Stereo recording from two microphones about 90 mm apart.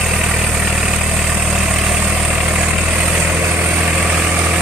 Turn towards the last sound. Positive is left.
turn(degrees=-15)  # may be behind; listen again after turning